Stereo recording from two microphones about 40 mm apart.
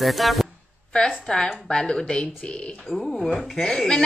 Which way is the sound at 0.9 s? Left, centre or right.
Centre.